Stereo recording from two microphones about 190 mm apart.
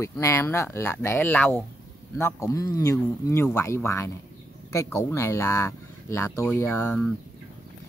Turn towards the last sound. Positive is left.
turn(degrees=10)  # may be behind; listen again after turning